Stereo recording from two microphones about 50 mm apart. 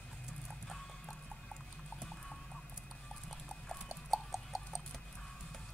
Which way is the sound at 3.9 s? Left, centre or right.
Centre.